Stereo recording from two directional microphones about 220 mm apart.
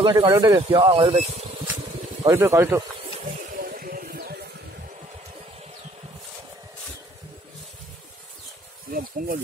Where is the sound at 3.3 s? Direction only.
40° right (ahead or behind).